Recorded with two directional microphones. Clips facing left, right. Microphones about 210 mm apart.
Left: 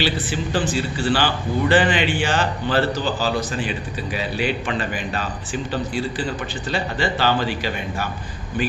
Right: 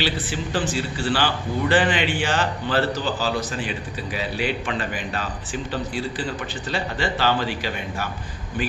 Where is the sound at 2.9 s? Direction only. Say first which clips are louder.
Left 2 dB; 30° left (ahead or behind).